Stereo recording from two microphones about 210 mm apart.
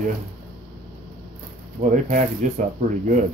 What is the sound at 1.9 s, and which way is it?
Speech, 40° right (ahead or behind).